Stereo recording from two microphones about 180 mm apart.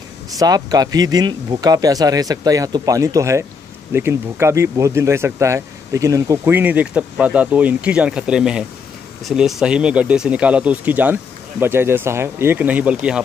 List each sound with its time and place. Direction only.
0.4 s speech: 20° right (ahead or behind)